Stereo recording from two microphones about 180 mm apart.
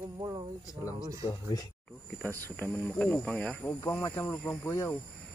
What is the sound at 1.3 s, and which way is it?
Speech, 20° left (ahead or behind).